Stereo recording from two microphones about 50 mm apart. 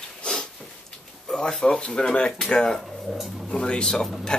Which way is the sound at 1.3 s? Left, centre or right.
Centre.